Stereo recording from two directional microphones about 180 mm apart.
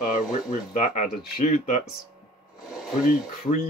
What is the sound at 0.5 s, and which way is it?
Speech, 45° left (ahead or behind).